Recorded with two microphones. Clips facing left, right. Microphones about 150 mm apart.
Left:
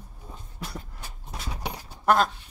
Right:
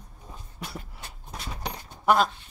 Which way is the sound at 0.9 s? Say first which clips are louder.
Even; 5° left (ahead or behind).